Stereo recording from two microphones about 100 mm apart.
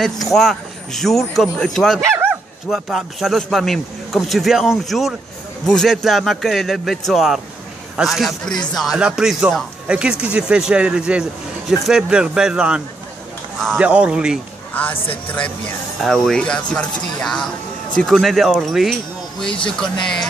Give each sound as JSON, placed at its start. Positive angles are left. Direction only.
{"t": 0.0, "sound": "speech", "side_deg": 0}
{"t": 14.7, "sound": "speech", "side_deg": 15}
{"t": 16.0, "sound": "speech", "side_deg": 5}